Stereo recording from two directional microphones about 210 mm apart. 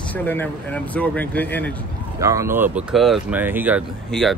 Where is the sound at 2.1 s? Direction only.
15° right (ahead or behind).